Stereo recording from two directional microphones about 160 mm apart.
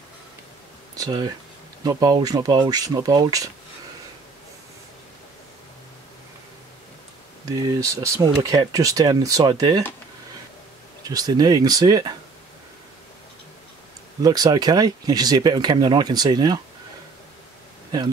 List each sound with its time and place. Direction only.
0.9 s speech: 25° right (ahead or behind)
7.4 s speech: 20° right (ahead or behind)
11.1 s speech: 25° right (ahead or behind)
14.2 s speech: 25° right (ahead or behind)